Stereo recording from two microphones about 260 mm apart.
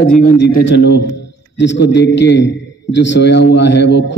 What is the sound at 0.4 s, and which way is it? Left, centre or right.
A man's voice, left.